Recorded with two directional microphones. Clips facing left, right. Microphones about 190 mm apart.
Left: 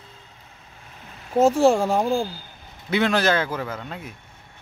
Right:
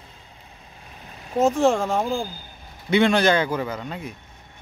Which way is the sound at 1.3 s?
10° left (ahead or behind).